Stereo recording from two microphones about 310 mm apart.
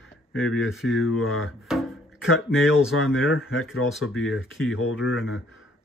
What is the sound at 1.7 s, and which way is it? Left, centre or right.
Music, centre.